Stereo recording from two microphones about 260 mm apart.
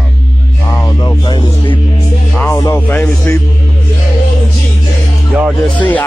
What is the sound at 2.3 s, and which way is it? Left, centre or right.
Speech, centre.